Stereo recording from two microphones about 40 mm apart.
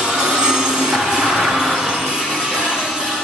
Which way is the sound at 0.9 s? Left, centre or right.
Centre.